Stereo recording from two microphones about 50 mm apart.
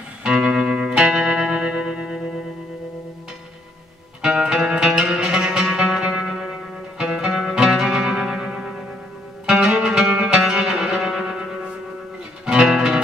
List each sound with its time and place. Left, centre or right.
0.2 s music: centre
4.2 s music: centre
7.0 s music: centre